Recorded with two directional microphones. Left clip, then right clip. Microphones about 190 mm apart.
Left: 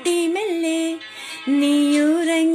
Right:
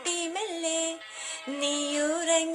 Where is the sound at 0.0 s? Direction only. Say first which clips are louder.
Left 11 dB; 15° left (ahead or behind).